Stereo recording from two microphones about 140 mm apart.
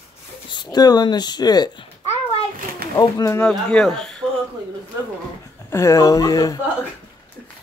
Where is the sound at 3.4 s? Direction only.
5° left (ahead or behind).